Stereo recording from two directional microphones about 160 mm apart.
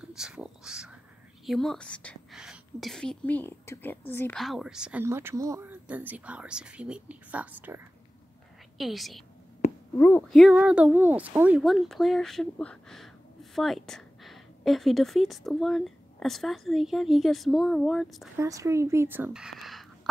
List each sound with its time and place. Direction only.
0.0 s a sound: 5° right (ahead or behind)
1.4 s speech: centre (ahead or behind)
2.3 s a woman's voice: 5° right (ahead or behind); by 4.4 s 15° left (ahead or behind)
4.4 s speech: centre (ahead or behind)
5.0 s speech: 15° right (ahead or behind); by 9.2 s centre (ahead or behind)
9.9 s speech: 15° left (ahead or behind)
10.2 s speech: centre (ahead or behind)
18.4 s speech: 20° right (ahead or behind); by 19.9 s centre (ahead or behind)